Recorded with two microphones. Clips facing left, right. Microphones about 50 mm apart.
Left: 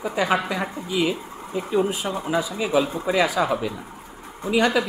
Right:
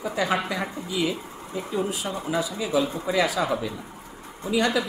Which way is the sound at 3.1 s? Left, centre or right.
Left.